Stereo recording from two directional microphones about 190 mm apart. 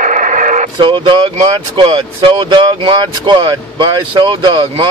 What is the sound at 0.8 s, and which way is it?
Speech, 25° right (ahead or behind).